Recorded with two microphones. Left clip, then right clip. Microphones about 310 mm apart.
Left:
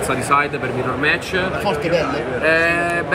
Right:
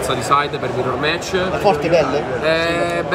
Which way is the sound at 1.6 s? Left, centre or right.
Right.